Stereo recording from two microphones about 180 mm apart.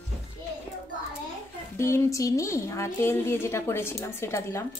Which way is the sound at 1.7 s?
15° left (ahead or behind).